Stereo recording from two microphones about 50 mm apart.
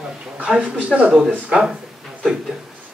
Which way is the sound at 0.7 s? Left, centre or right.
Right.